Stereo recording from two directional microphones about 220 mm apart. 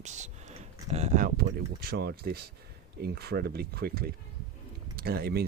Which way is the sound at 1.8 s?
45° right (ahead or behind).